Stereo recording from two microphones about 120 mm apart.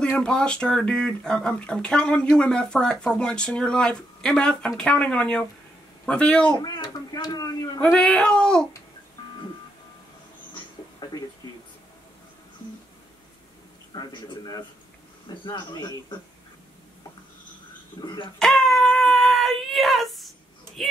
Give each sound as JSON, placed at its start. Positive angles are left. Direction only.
{"t": 0.0, "sound": "speech", "side_deg": 5}
{"t": 6.5, "sound": "a child's voice", "side_deg": 35}
{"t": 7.8, "sound": "speech", "side_deg": 5}
{"t": 11.0, "sound": "a sound", "side_deg": 35}
{"t": 13.9, "sound": "a man's voice", "side_deg": 35}
{"t": 18.0, "sound": "a man's voice", "side_deg": 40}
{"t": 18.4, "sound": "a sound", "side_deg": 5}